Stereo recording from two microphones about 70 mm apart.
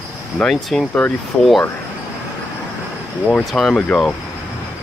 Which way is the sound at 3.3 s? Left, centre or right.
Centre.